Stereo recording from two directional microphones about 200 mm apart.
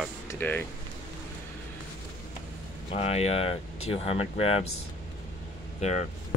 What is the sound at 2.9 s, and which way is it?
Speech, 30° left (ahead or behind).